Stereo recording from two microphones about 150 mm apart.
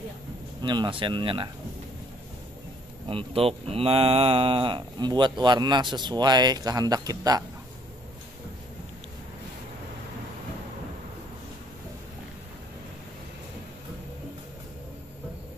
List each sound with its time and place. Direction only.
0.6 s speech: 30° right (ahead or behind)
3.1 s speech: 40° right (ahead or behind)